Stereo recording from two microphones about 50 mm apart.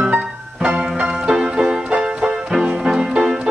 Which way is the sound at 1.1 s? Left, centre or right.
Centre.